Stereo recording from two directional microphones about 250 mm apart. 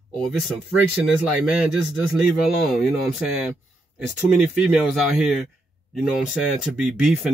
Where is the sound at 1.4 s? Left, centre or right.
Centre.